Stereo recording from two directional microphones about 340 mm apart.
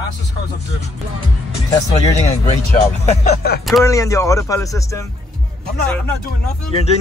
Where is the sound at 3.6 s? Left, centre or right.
Centre.